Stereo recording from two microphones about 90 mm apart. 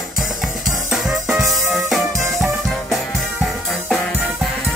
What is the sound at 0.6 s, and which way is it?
Music, 5° right (ahead or behind).